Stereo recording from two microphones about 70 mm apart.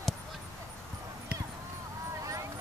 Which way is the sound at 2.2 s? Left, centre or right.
Right.